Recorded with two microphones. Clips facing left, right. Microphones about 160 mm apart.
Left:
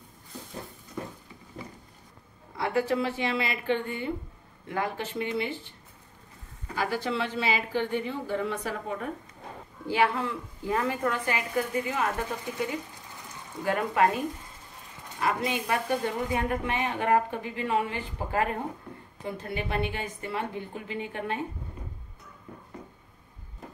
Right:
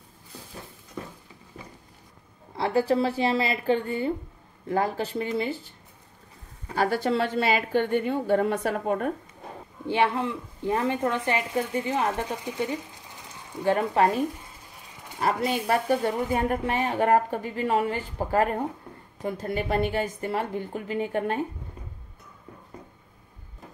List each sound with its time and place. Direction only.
2.5 s a woman's voice: 30° right (ahead or behind)
7.0 s a woman's voice: 45° right (ahead or behind)
9.8 s a woman's voice: 20° right (ahead or behind)
13.7 s a woman's voice: 30° right (ahead or behind)